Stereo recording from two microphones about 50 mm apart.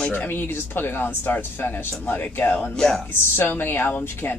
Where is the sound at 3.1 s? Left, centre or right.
Left.